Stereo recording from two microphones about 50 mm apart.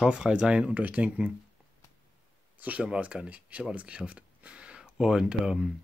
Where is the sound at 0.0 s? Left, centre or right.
Centre.